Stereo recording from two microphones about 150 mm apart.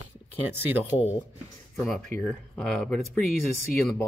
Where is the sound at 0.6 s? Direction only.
10° right (ahead or behind).